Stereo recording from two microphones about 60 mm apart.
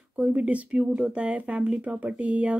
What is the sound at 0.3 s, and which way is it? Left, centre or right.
Speech, right.